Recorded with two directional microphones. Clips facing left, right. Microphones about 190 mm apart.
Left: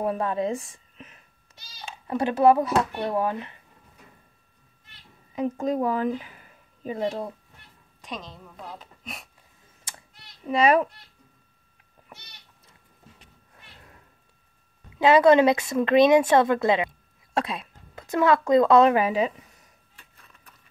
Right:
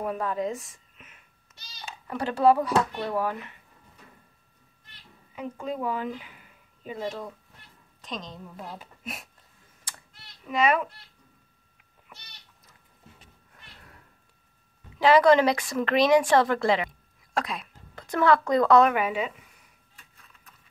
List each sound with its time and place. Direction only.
0.0 s a woman's voice: 30° left (ahead or behind)
2.0 s a woman's voice: 20° left (ahead or behind)
5.3 s a woman's voice: 40° left (ahead or behind)
8.0 s a woman's voice: 5° left (ahead or behind)
8.5 s speech: 5° right (ahead or behind)
9.8 s cat: 25° left (ahead or behind)
15.0 s speech: 25° left (ahead or behind)